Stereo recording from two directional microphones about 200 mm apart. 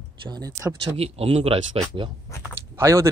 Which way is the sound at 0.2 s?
20° right (ahead or behind).